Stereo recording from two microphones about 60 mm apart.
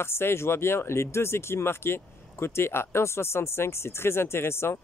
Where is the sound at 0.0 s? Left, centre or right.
Left.